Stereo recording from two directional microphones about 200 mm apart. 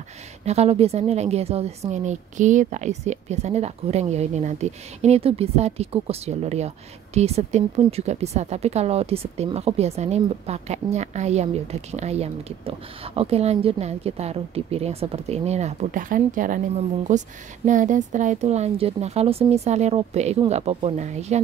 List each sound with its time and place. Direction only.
0.5 s speech: 30° right (ahead or behind)